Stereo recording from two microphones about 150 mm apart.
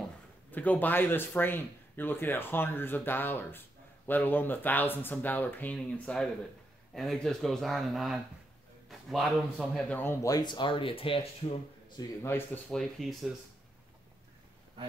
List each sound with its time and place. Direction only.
0.5 s a man's voice: 10° left (ahead or behind); by 11.2 s 35° left (ahead or behind)
12.2 s speech: 15° left (ahead or behind)
12.7 s speech: centre (ahead or behind)